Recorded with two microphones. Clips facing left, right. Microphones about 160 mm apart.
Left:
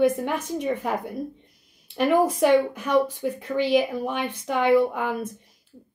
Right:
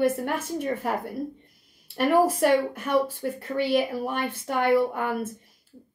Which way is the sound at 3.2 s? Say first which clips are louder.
Left 2 dB; 5° right (ahead or behind).